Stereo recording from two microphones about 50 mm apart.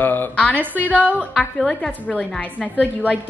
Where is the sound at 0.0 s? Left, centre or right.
Left.